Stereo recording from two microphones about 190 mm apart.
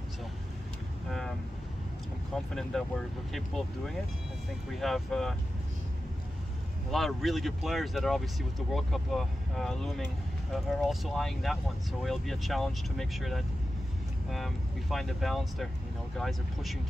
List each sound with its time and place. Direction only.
2.3 s speech: centre (ahead or behind)
6.9 s speech: centre (ahead or behind)